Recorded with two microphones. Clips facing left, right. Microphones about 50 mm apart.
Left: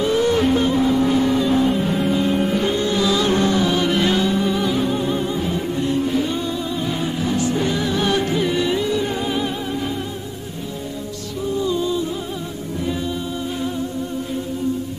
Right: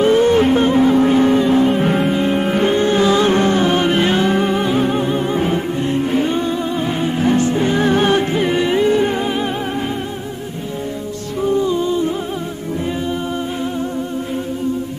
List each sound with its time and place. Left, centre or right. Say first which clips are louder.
0.0 s music: right 5 dB; right
1.5 s music: right 4 dB; right
1.8 s music: right 4 dB; right
2.1 s music: right 3 dB; right
4.3 s music: right 4 dB; right
5.0 s music: right 3 dB; right
5.3 s music: right 5 dB; right
5.8 s music: even; right
11.6 s music: right 3 dB; right